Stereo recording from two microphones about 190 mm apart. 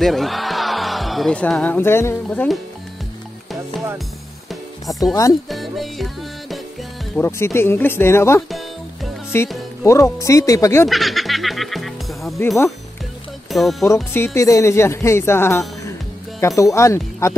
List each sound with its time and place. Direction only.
0.0 s speech: centre (ahead or behind)
4.5 s music: centre (ahead or behind)
7.2 s music: 15° left (ahead or behind)
8.4 s speech: centre (ahead or behind)
9.3 s music: 10° left (ahead or behind)
10.9 s music: centre (ahead or behind)
13.5 s speech: centre (ahead or behind)
14.1 s music: 15° left (ahead or behind)